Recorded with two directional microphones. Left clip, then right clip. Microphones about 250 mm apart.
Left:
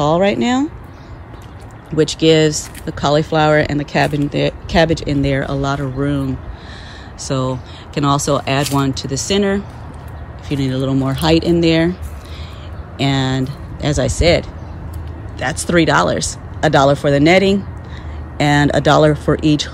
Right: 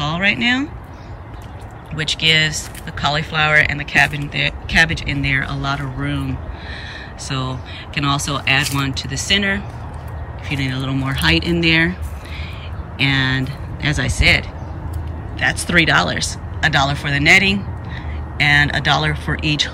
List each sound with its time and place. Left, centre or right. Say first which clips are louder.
0.0 s speech: left 3 dB; centre
2.0 s speech: left 3 dB; centre